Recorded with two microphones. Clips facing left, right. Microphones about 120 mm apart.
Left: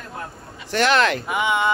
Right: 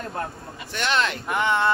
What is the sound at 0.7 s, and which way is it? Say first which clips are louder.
Speech: left 6 dB; 80° left.